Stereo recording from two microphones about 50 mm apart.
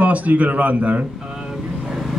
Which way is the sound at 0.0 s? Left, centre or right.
Right.